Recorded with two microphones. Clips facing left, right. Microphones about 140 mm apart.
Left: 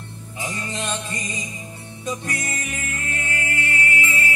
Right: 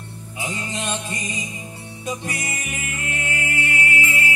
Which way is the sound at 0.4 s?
20° right (ahead or behind).